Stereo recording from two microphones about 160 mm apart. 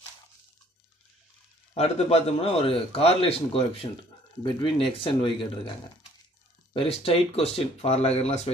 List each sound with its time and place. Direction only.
1.7 s a man's voice: 40° left (ahead or behind)
6.7 s a man's voice: 35° left (ahead or behind)